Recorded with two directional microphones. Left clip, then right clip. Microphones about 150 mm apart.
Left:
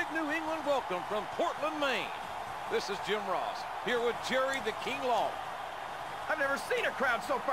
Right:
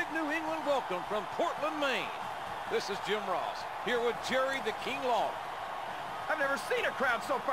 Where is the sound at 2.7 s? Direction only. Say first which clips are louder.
Even; centre (ahead or behind).